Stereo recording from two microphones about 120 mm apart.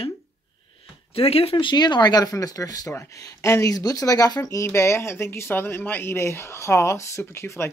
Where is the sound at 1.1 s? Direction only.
55° left (ahead or behind).